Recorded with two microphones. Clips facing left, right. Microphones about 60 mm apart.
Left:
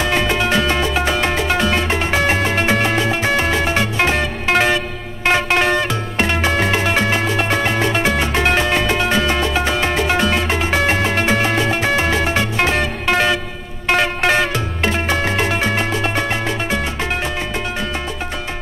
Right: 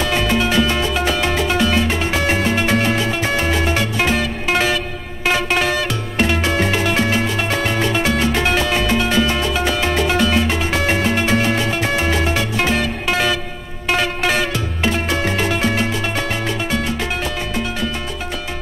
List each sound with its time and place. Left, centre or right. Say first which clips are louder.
0.0 s music: even; centre
13.1 s vehicle: left 3 dB; centre
13.9 s music: left 3 dB; centre